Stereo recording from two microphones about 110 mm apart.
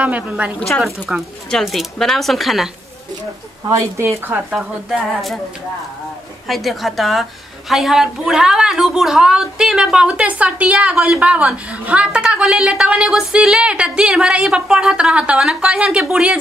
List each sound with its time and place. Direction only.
0.0 s a woman's voice: 10° right (ahead or behind)
3.6 s a woman's voice: 30° right (ahead or behind)
4.5 s speech: centre (ahead or behind)
6.4 s a woman's voice: centre (ahead or behind)